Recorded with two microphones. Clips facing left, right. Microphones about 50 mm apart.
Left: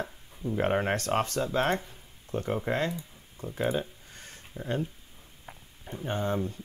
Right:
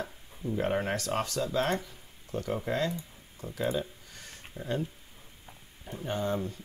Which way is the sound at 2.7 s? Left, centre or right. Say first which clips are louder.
Left 1 dB; left.